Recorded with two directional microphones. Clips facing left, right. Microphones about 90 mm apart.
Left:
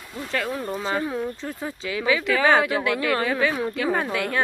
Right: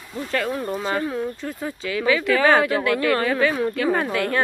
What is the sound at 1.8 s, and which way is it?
Speech, 15° left (ahead or behind).